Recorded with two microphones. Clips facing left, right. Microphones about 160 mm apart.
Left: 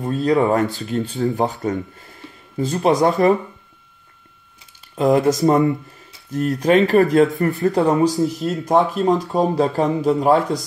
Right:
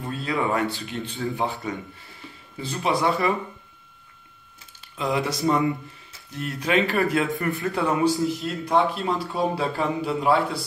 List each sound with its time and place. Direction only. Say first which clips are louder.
0.0 s speech: left 9 dB; 40° left (ahead or behind)
4.9 s speech: left 10 dB; 45° left (ahead or behind)
8.2 s speech: left 5 dB; centre (ahead or behind)
8.5 s speech: left 5 dB; 45° left (ahead or behind)